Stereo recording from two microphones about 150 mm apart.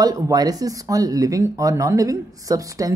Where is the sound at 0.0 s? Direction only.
25° right (ahead or behind).